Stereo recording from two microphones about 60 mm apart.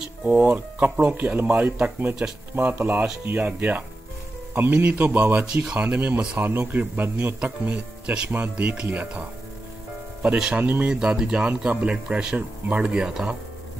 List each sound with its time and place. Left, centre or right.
0.3 s speech: right
5.3 s speech: centre
6.3 s speech: right
10.2 s speech: right
10.6 s speech: right
10.9 s speech: centre